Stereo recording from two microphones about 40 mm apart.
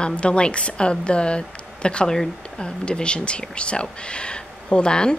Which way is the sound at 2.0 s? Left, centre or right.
Centre.